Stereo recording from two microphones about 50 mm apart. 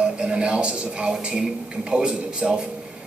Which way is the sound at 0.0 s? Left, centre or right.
Centre.